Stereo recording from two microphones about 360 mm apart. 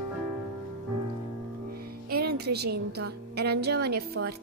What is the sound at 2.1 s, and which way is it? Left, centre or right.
A woman's voice, right.